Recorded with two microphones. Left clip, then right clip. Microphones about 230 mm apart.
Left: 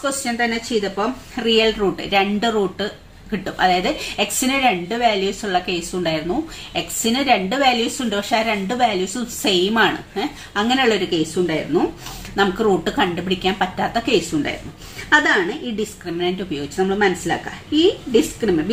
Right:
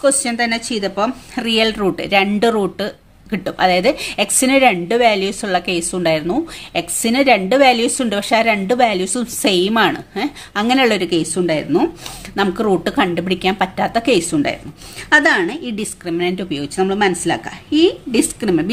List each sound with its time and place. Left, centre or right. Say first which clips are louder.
0.0 s a woman's voice: right 5 dB; right